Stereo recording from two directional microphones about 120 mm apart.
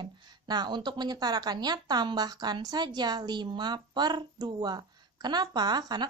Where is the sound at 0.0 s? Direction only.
40° right (ahead or behind).